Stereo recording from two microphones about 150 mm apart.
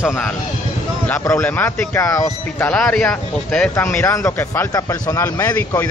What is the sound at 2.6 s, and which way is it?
A man's voice, 5° left (ahead or behind).